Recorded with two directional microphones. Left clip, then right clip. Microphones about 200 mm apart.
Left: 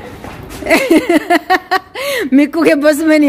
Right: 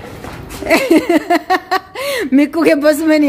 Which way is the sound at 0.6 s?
10° left (ahead or behind).